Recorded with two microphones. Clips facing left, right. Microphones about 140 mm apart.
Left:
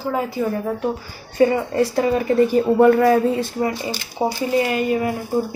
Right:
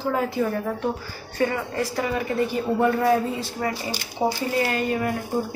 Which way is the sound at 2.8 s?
60° left (ahead or behind).